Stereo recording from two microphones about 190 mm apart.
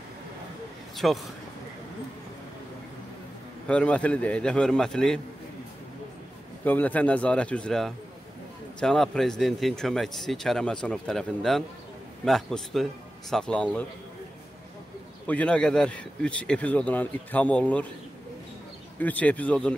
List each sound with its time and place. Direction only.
0.9 s speech: centre (ahead or behind)
3.6 s speech: 5° left (ahead or behind)
6.6 s a man's voice: 10° left (ahead or behind)
15.2 s a man's voice: 5° left (ahead or behind)
18.9 s a man's voice: 10° left (ahead or behind)